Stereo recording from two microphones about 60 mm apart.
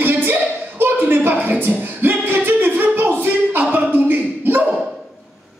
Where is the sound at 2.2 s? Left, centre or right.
Right.